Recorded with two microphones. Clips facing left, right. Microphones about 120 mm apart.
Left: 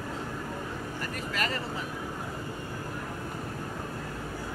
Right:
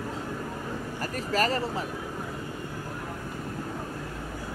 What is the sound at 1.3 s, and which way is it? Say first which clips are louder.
Speech: right 7 dB; 35° right (ahead or behind).